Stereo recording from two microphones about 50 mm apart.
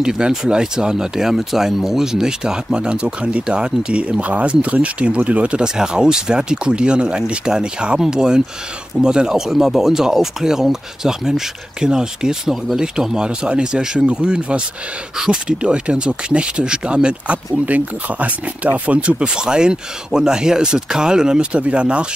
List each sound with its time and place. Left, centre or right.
0.0 s speech: centre